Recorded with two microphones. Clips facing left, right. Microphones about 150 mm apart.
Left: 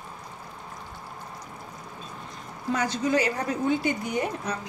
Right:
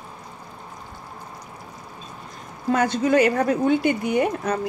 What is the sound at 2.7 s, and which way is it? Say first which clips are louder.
Speech: right 6 dB; 55° right (ahead or behind).